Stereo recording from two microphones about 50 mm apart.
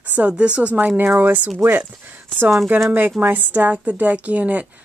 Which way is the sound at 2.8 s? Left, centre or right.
Right.